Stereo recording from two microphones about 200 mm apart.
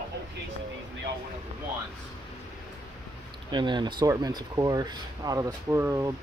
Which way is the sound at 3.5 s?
20° right (ahead or behind).